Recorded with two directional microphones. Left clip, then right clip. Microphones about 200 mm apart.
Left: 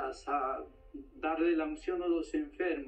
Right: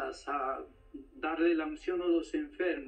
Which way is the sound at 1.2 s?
25° right (ahead or behind).